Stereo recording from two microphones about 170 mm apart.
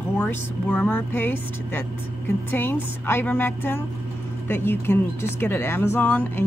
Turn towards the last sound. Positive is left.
turn(degrees=10)  # may be behind; listen again after turning